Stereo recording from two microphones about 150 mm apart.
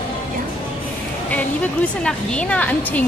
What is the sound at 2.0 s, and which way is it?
Speech, 5° left (ahead or behind).